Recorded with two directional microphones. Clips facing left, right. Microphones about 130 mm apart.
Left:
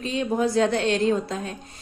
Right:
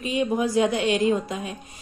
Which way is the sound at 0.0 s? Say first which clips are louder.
Even; 15° right (ahead or behind).